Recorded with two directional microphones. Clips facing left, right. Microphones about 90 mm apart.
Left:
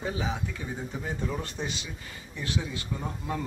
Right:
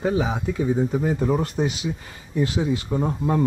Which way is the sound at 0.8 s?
50° right (ahead or behind).